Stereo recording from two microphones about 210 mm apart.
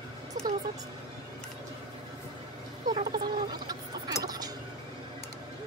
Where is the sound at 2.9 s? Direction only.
20° right (ahead or behind).